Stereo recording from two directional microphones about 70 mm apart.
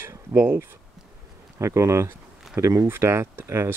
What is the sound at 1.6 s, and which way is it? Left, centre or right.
Speech, right.